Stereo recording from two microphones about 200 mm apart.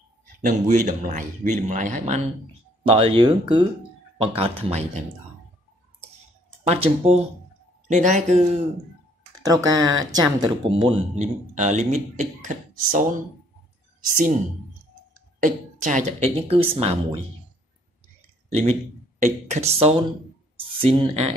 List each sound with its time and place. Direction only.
0.4 s speech: 40° right (ahead or behind)
6.6 s speech: 30° right (ahead or behind)
9.5 s speech: 20° right (ahead or behind); by 14.4 s 40° right (ahead or behind)
15.4 s speech: 40° right (ahead or behind)
18.5 s speech: 30° right (ahead or behind)